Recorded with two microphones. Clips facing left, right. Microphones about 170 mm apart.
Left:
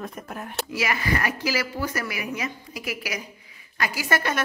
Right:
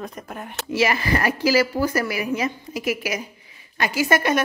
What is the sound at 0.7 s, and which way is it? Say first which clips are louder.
A woman's voice: right 6 dB; 30° right (ahead or behind).